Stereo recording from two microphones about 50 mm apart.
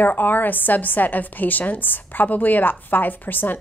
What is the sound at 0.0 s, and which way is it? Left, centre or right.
A woman's voice, left.